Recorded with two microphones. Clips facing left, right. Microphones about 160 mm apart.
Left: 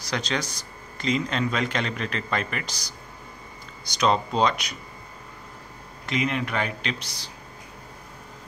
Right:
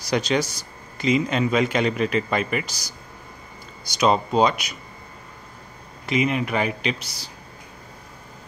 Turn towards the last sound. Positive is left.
turn(degrees=-5)  # may be behind; listen again after turning